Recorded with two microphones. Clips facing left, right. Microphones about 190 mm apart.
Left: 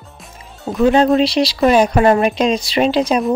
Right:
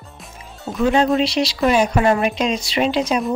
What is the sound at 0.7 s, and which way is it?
Speech, 35° left (ahead or behind).